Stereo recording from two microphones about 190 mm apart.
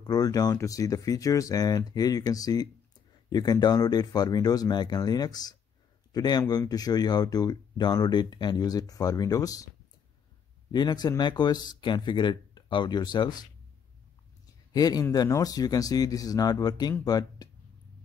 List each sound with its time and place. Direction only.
0.0 s speech: 20° left (ahead or behind)
10.7 s speech: 20° left (ahead or behind)
14.7 s speech: 20° left (ahead or behind)